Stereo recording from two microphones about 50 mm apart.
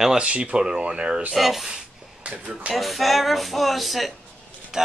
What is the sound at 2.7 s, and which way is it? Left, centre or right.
Speech, centre.